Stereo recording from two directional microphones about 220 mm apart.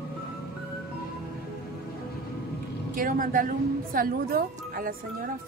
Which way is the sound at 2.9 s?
40° right (ahead or behind).